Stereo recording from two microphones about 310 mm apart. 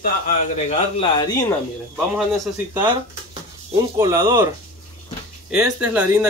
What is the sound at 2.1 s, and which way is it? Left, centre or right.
Speech, centre.